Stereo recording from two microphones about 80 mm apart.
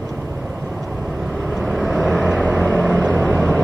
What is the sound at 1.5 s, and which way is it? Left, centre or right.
Vehicle, centre.